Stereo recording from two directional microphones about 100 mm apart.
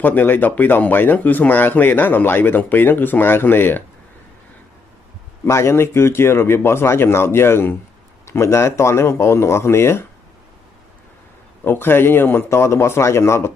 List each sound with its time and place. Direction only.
0.0 s speech: 20° left (ahead or behind)
5.4 s speech: 25° left (ahead or behind)
11.6 s speech: 20° left (ahead or behind)